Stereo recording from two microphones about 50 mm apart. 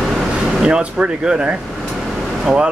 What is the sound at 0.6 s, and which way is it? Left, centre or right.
Speech, centre.